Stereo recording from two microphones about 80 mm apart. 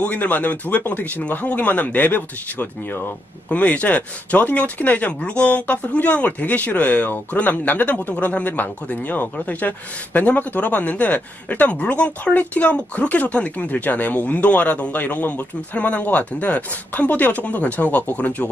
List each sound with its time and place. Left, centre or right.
0.0 s speech: centre